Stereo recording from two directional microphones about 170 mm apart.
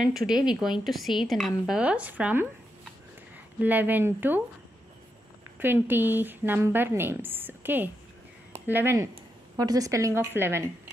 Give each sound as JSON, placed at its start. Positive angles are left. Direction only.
{"t": 0.0, "sound": "a woman's voice", "side_deg": 0}
{"t": 3.5, "sound": "speech", "side_deg": -10}
{"t": 5.6, "sound": "speech", "side_deg": -10}